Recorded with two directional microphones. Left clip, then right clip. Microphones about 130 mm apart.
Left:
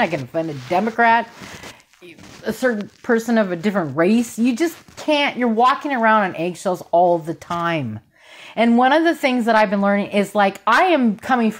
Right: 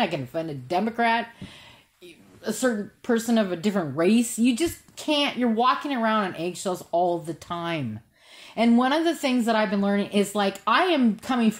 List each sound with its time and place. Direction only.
0.0 s speech: 40° left (ahead or behind)
2.4 s speech: 40° left (ahead or behind)